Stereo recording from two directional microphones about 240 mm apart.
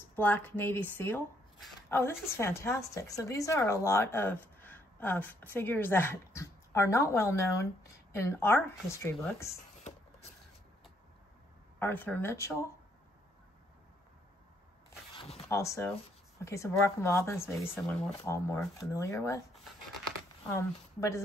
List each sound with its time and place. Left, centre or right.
0.1 s speech: centre
11.8 s speech: centre
15.1 s zipper: left
15.4 s speech: centre
20.5 s speech: centre